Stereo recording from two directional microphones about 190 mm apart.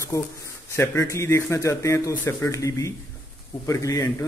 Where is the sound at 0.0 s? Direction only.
15° left (ahead or behind).